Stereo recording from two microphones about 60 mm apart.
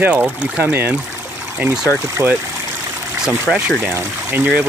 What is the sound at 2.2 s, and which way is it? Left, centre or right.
Speech, right.